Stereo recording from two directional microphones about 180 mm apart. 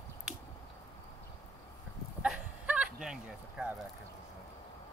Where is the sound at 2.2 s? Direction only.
5° right (ahead or behind).